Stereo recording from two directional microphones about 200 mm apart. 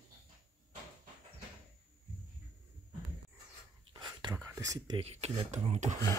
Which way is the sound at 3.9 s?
20° right (ahead or behind).